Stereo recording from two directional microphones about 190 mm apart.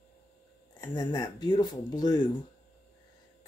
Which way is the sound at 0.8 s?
20° left (ahead or behind).